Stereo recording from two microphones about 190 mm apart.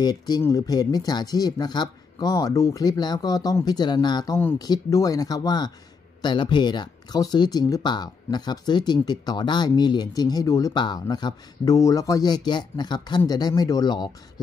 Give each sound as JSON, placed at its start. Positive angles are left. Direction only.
{"t": 0.0, "sound": "speech", "side_deg": 20}